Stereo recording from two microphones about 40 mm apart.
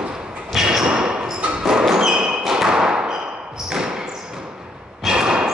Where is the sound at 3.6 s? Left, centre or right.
Centre.